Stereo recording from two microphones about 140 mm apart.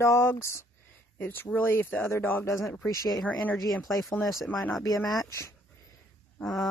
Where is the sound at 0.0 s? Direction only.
20° left (ahead or behind).